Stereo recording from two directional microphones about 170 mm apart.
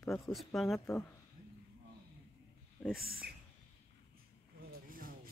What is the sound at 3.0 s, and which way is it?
Speech, 60° right (ahead or behind).